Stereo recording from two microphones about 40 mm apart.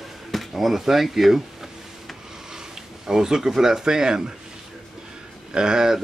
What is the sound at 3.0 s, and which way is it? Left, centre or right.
Speech, centre.